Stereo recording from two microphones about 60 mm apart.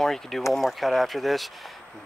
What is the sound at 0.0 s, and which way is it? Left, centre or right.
Speech, centre.